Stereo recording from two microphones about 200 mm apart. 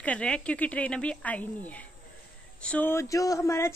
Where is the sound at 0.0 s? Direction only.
5° left (ahead or behind).